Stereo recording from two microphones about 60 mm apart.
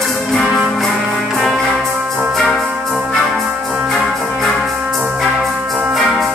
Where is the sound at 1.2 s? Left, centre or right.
Centre.